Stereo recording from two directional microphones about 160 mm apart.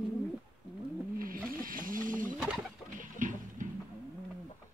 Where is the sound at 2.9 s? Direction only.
55° right (ahead or behind).